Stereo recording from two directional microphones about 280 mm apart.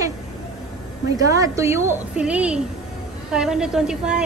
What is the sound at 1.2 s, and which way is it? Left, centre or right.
A woman's voice, centre.